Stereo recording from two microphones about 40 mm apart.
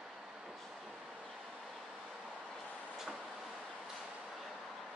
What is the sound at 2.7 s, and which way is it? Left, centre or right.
Vehicle, right.